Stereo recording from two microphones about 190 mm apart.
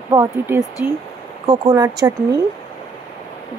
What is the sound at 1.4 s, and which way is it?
Speech, 20° right (ahead or behind).